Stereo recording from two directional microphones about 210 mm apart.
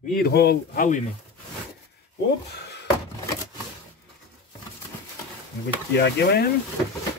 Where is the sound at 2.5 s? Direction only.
55° left (ahead or behind).